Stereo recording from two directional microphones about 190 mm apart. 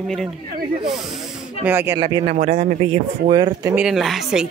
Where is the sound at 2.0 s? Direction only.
25° right (ahead or behind).